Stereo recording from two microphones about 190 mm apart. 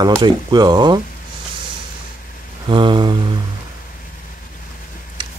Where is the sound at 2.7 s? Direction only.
25° right (ahead or behind).